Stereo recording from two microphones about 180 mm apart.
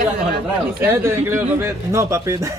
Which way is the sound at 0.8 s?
15° right (ahead or behind).